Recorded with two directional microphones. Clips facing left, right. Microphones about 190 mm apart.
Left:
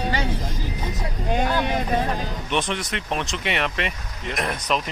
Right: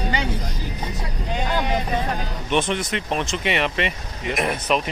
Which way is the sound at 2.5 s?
Centre (ahead or behind).